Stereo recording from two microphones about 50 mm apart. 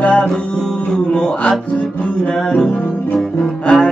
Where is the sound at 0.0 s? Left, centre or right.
Left.